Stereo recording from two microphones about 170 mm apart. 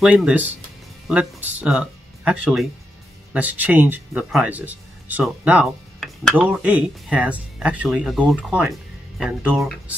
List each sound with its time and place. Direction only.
0.0 s speech: 5° right (ahead or behind)
6.4 s speech: 10° right (ahead or behind)